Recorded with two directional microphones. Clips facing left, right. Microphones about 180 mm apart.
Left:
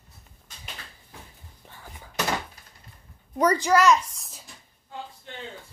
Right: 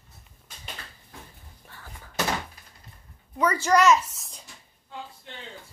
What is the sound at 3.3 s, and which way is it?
Speech, 40° left (ahead or behind).